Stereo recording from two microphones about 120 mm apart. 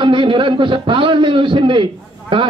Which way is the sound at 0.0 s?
45° right (ahead or behind).